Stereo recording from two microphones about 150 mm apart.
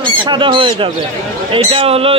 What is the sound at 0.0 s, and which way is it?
Speech, 30° right (ahead or behind).